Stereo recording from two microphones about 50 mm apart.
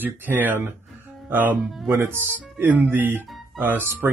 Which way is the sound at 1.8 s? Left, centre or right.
Right.